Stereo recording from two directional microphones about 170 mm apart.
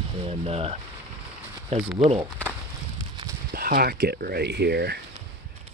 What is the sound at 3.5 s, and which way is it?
Speech, 65° right (ahead or behind).